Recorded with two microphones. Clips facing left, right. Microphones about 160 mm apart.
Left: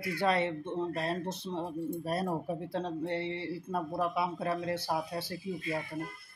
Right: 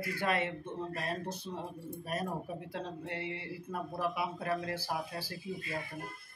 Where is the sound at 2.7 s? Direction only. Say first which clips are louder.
Left 9 dB; 30° left (ahead or behind).